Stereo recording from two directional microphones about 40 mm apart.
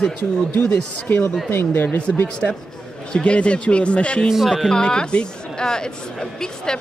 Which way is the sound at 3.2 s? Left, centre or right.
Left.